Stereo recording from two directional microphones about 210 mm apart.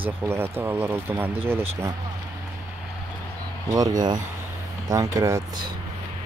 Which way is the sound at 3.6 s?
15° right (ahead or behind).